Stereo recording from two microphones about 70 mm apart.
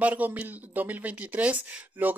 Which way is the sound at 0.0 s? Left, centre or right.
Right.